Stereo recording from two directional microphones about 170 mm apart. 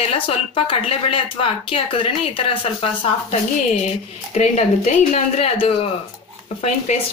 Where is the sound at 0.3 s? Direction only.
35° left (ahead or behind).